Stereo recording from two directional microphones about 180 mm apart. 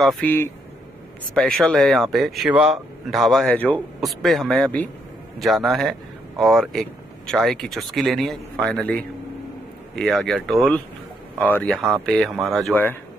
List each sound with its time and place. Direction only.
0.0 s speech: 10° left (ahead or behind)